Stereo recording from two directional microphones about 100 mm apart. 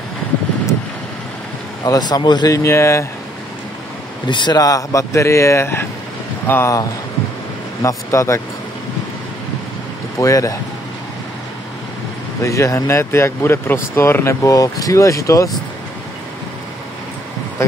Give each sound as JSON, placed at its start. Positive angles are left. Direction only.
{"t": 1.9, "sound": "speech", "side_deg": 45}
{"t": 2.5, "sound": "speech", "side_deg": 30}
{"t": 4.3, "sound": "speech", "side_deg": 50}
{"t": 4.6, "sound": "speech", "side_deg": 35}
{"t": 7.8, "sound": "speech", "side_deg": 30}
{"t": 10.1, "sound": "speech", "side_deg": 35}
{"t": 12.4, "sound": "speech", "side_deg": 30}